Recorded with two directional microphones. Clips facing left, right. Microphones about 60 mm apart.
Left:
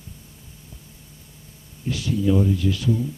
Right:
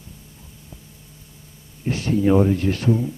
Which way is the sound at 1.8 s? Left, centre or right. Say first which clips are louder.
Right 3 dB; right.